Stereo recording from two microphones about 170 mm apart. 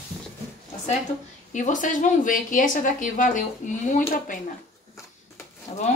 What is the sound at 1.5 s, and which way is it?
A woman's voice, 45° left (ahead or behind).